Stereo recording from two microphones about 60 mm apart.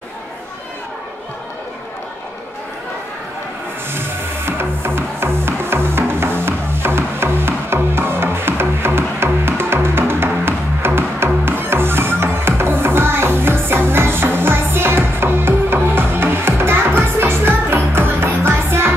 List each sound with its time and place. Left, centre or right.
4.5 s music: right